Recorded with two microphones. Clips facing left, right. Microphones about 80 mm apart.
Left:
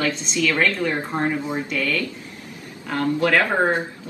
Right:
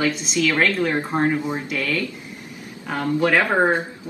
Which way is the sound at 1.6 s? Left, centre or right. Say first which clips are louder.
Even; centre.